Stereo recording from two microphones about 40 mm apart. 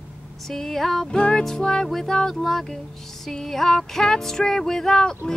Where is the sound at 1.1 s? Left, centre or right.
Left.